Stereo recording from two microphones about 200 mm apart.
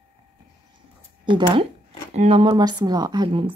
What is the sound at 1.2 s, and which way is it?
A woman's voice, 25° right (ahead or behind).